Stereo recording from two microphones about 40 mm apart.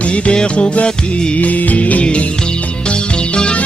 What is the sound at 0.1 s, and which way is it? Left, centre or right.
Music, left.